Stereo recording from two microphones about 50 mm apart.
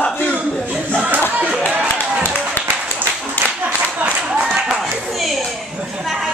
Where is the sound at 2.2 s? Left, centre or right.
Left.